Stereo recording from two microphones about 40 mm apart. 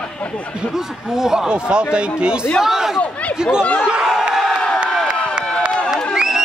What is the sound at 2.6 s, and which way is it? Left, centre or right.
Speech, centre.